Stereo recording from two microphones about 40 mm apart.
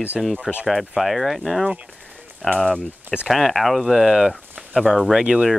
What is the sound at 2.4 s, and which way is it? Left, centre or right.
Speech, centre.